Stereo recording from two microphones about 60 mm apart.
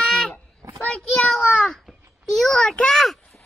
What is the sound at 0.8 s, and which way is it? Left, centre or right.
Child singing, centre.